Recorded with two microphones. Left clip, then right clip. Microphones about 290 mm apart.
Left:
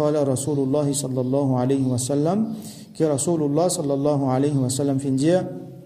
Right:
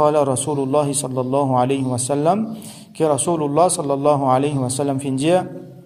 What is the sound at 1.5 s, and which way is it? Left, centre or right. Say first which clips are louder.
Speech: right 4 dB; centre.